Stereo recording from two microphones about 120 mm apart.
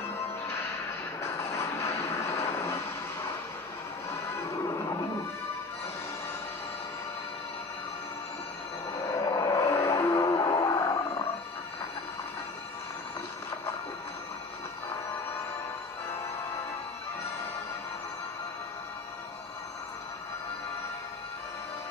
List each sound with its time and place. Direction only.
1.2 s vehicle: 25° left (ahead or behind)
4.1 s music: 25° left (ahead or behind)
9.0 s vehicle: 30° left (ahead or behind)